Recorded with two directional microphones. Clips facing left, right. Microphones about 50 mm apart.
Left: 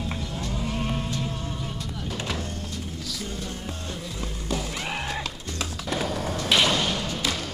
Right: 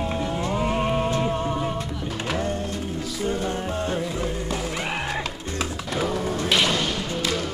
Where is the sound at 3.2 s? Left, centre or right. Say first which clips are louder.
Right 12 dB; right.